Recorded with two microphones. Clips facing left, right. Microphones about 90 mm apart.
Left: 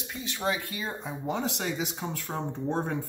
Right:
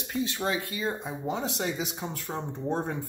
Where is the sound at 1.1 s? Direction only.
15° right (ahead or behind).